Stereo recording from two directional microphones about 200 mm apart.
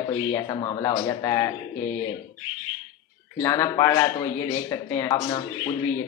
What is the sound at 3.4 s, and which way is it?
A man's voice, 20° left (ahead or behind).